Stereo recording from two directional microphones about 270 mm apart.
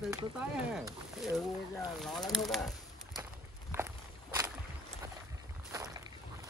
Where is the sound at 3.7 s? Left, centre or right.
Centre.